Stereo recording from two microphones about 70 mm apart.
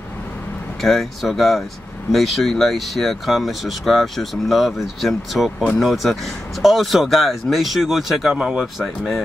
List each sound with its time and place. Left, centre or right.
0.7 s speech: centre